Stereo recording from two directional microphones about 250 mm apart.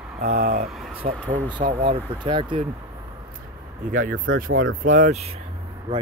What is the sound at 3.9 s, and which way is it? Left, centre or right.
Speech, right.